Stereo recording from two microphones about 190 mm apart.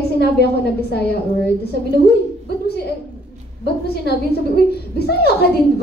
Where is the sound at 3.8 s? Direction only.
55° left (ahead or behind).